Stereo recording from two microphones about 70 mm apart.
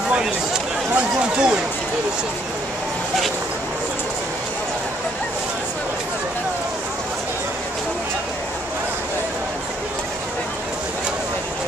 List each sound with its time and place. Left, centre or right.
0.1 s speech: centre